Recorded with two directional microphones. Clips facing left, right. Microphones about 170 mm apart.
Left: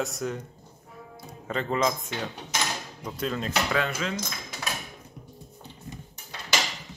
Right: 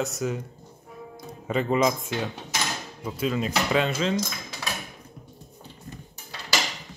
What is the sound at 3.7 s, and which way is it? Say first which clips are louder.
Cutlery: right 4 dB; 25° right (ahead or behind).